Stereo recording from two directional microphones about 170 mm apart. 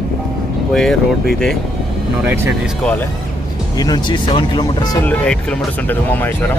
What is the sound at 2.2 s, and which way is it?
Speech, 15° right (ahead or behind).